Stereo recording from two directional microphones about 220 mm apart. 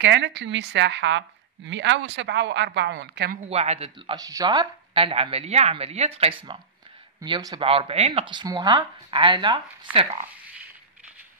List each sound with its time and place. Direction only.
0.0 s a woman's voice: 50° right (ahead or behind)
3.4 s speech: 30° right (ahead or behind)